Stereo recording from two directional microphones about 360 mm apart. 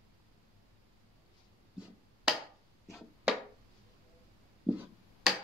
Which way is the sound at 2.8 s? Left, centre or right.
Centre.